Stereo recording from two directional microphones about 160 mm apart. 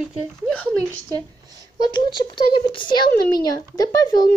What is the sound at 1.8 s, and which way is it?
A woman's voice, 30° left (ahead or behind).